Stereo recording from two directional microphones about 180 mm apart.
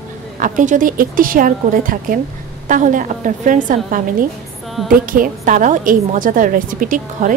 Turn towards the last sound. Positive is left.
turn(degrees=-50)  # may be behind; listen again after turning